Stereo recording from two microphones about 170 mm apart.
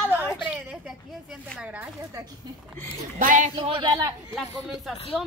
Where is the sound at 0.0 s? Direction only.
10° left (ahead or behind).